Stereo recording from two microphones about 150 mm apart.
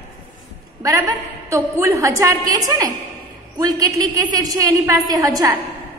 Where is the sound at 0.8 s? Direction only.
20° right (ahead or behind).